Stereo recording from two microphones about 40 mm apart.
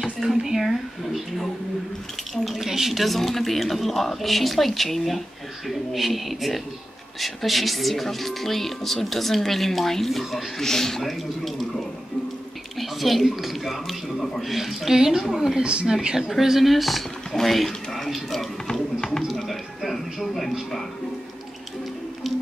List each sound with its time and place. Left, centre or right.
0.2 s a woman's voice: centre
0.7 s speech: centre
2.6 s a woman's voice: centre
15.2 s speech: centre
15.6 s a woman's voice: right
16.3 s speech: centre
19.2 s a sound: centre